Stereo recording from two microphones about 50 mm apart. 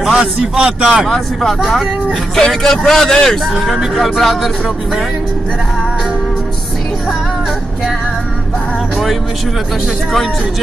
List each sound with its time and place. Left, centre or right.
0.2 s a man's voice: right
0.8 s speech: centre
1.1 s speech: centre
1.6 s speech: centre
2.3 s speech: centre
3.6 s speech: centre